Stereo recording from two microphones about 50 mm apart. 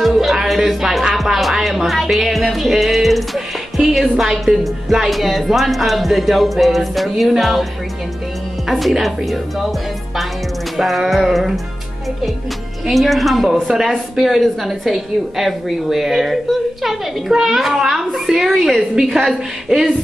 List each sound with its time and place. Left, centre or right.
0.0 s music: centre
8.6 s music: centre
10.8 s music: centre
12.8 s music: centre
16.8 s a woman's voice: centre